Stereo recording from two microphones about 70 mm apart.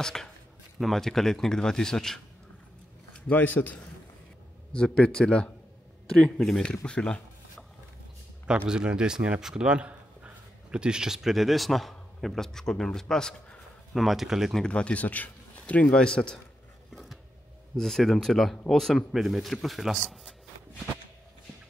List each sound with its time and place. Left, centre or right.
0.0 s speech: centre
3.3 s a man's voice: left
4.7 s speech: centre
6.6 s speech: centre
8.5 s speech: centre
14.0 s speech: centre
14.6 s speech: centre
16.9 s a sound: centre
17.7 s speech: centre